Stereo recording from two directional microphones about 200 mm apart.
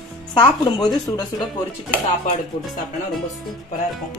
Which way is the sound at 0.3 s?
20° left (ahead or behind).